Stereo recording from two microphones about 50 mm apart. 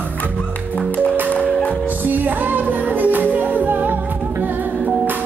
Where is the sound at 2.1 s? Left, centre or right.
Right.